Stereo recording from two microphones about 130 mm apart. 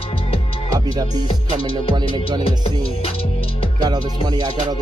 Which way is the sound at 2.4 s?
45° left (ahead or behind).